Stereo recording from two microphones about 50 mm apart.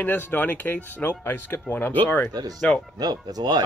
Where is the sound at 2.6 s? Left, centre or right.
Centre.